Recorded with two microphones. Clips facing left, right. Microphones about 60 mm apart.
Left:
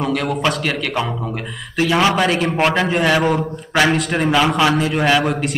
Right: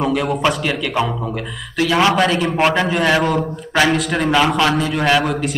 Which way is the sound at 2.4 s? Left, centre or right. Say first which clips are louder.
Right 1 dB; centre.